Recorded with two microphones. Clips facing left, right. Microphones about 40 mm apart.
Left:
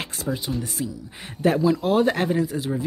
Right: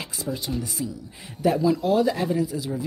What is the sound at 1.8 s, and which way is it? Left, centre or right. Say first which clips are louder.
Speech: left 1 dB; left.